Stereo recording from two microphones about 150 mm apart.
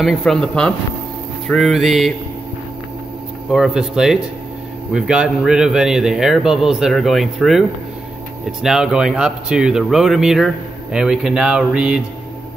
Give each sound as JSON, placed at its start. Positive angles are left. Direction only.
{"t": 0.0, "sound": "speech", "side_deg": 0}
{"t": 3.4, "sound": "speech", "side_deg": 0}